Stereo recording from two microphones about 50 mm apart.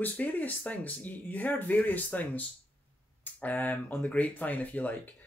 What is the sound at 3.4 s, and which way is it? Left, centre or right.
Speech, left.